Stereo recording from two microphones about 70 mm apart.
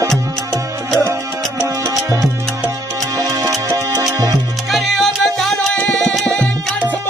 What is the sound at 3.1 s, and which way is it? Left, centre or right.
Music, right.